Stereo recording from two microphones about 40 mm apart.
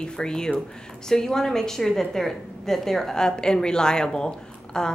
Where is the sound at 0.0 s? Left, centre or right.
Centre.